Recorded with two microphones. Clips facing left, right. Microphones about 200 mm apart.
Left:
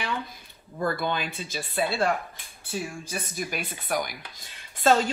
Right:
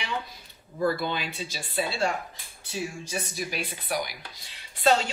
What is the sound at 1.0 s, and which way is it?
Speech, 50° left (ahead or behind).